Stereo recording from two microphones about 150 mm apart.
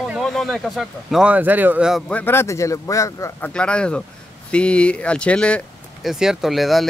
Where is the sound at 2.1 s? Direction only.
15° left (ahead or behind).